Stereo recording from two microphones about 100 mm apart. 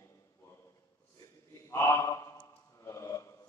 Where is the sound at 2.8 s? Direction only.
30° left (ahead or behind).